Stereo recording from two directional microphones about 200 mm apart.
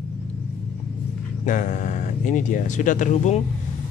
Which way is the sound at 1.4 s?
40° left (ahead or behind).